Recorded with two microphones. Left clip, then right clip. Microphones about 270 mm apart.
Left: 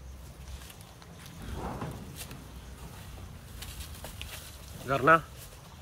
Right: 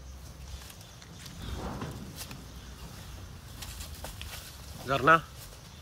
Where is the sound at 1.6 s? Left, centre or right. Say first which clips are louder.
Left 2 dB; left.